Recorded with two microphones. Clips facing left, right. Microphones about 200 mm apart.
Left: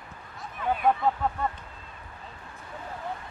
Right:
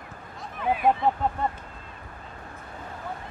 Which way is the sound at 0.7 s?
5° right (ahead or behind).